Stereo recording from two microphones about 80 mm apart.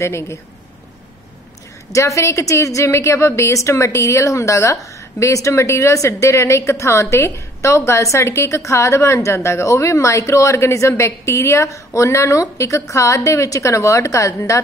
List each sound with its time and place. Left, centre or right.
0.0 s a woman's voice: left
1.9 s a woman's voice: left